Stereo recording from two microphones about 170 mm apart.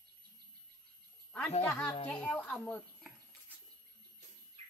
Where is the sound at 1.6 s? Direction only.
10° left (ahead or behind).